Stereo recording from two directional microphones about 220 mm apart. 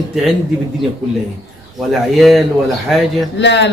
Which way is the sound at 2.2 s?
Centre (ahead or behind).